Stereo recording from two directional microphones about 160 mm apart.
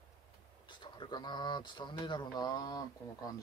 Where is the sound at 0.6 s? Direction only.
30° left (ahead or behind).